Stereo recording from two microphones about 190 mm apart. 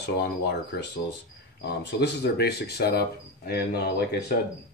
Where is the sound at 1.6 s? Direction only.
60° left (ahead or behind).